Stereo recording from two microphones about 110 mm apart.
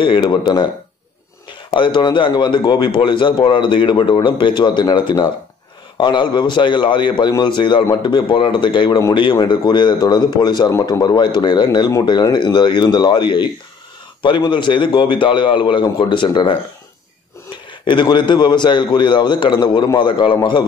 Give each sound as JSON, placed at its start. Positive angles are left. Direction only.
{"t": 0.0, "sound": "a man's voice", "side_deg": 45}
{"t": 1.7, "sound": "a man's voice", "side_deg": 45}
{"t": 17.8, "sound": "a man's voice", "side_deg": 45}